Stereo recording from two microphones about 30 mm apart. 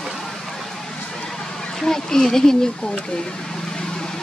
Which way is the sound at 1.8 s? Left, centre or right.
Centre.